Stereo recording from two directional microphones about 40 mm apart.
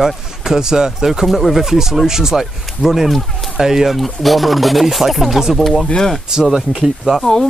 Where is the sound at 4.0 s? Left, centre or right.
Centre.